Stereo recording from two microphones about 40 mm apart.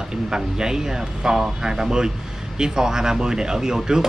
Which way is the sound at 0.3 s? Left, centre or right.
Centre.